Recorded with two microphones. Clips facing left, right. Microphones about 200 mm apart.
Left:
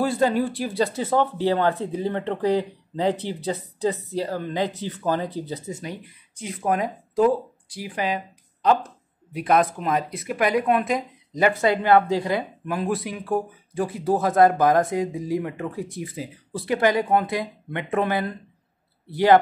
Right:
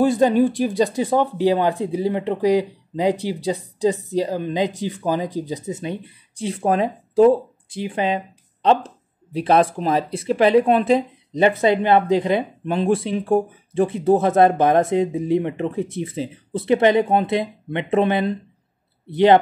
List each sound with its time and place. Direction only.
0.0 s speech: 20° right (ahead or behind)